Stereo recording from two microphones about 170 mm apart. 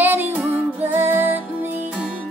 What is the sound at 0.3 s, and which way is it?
Music, 10° right (ahead or behind).